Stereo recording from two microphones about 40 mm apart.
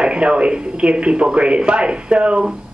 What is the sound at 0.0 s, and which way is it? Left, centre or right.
A woman's voice, right.